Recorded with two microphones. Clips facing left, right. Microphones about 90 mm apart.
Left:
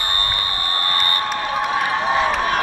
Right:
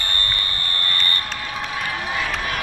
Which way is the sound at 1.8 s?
30° left (ahead or behind).